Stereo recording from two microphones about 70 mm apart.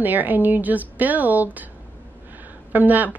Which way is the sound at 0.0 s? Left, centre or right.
Right.